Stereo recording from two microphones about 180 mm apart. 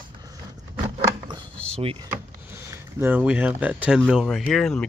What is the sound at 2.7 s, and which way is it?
Speech, 10° right (ahead or behind).